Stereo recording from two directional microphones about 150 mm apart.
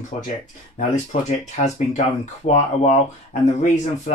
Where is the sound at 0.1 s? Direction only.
50° left (ahead or behind).